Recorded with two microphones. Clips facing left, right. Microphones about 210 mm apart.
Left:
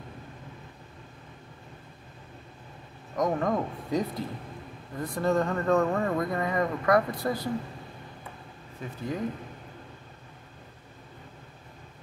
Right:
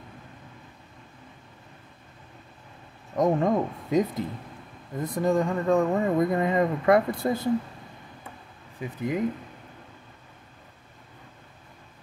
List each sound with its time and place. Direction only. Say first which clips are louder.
3.2 s speech: right 4 dB; 25° right (ahead or behind)
8.7 s speech: right 5 dB; 15° right (ahead or behind)